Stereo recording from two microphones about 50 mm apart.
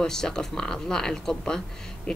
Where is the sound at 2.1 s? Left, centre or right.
Centre.